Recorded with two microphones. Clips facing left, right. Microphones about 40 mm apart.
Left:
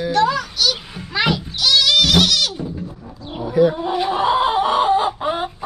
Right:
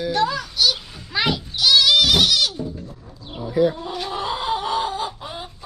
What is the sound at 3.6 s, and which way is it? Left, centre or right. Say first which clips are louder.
Chicken: left 4 dB; left.